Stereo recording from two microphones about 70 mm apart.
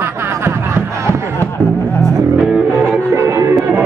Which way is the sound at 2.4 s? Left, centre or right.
Centre.